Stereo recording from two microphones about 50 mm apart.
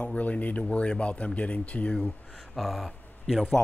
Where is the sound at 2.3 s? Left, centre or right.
Centre.